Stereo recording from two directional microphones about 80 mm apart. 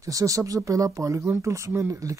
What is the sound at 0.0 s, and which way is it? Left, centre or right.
Speech, right.